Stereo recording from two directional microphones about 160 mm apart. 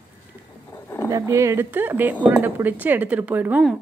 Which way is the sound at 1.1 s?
20° right (ahead or behind).